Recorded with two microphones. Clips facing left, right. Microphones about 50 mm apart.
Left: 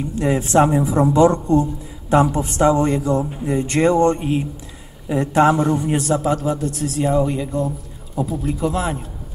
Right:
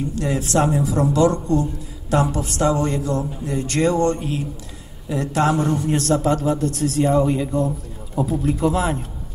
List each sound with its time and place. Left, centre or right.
0.1 s a man's voice: left; by 9.0 s centre